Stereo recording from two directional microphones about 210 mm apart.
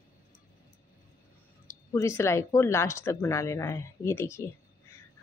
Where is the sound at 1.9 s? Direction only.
15° left (ahead or behind).